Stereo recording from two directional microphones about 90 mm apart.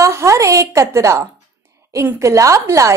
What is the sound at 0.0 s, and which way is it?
A woman's voice, 35° right (ahead or behind).